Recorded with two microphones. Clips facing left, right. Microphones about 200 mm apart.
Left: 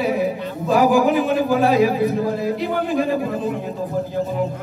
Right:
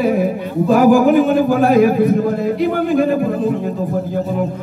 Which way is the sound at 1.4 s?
50° right (ahead or behind).